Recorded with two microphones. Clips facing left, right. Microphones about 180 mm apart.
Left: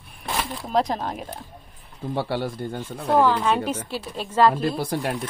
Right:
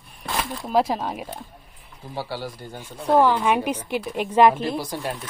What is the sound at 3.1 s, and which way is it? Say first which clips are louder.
A woman's voice: right 1 dB; 10° right (ahead or behind).